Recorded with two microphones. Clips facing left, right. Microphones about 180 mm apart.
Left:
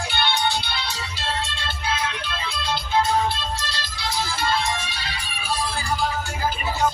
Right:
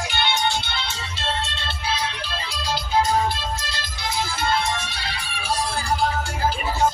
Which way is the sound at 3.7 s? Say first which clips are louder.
Even; 50° right (ahead or behind).